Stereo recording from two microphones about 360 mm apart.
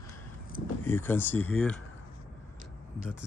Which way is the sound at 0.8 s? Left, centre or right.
Centre.